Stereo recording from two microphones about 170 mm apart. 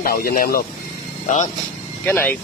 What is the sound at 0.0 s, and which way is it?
Speech, 60° left (ahead or behind).